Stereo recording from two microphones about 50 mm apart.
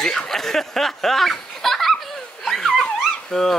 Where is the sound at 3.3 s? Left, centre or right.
Centre.